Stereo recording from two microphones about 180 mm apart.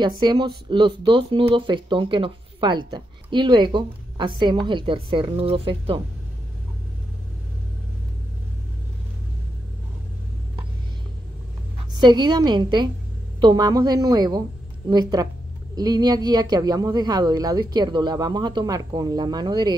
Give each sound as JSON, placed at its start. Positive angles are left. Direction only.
{"t": 0.2, "sound": "speech", "side_deg": -25}
{"t": 11.9, "sound": "speech", "side_deg": -25}